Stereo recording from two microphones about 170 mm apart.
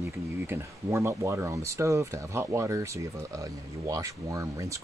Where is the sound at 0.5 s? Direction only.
15° right (ahead or behind).